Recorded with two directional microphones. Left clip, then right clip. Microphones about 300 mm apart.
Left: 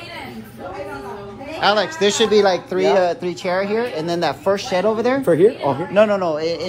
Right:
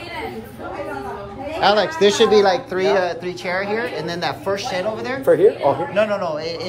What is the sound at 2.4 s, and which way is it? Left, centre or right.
Speech, centre.